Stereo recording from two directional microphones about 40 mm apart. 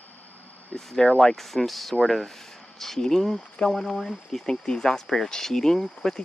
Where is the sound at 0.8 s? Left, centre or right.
Centre.